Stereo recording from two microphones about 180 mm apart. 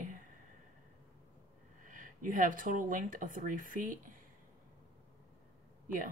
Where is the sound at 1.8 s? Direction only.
45° right (ahead or behind).